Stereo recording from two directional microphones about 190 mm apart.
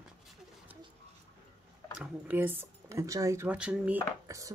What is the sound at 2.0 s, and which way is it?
Speech, 10° right (ahead or behind).